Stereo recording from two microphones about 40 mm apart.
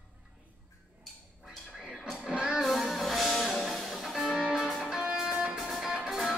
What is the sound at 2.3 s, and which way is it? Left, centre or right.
Music, right.